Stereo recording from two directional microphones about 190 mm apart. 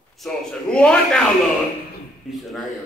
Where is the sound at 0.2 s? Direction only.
5° left (ahead or behind).